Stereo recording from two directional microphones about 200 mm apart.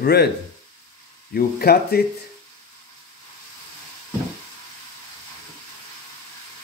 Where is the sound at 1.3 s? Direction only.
50° left (ahead or behind).